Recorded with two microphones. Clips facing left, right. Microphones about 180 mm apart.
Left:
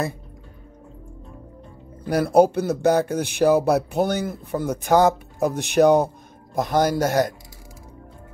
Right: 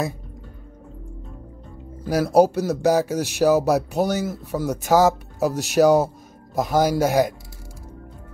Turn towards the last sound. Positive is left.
turn(degrees=-10)  # may be behind; listen again after turning